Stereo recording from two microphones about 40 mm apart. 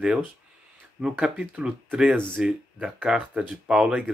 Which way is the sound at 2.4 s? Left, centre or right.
Right.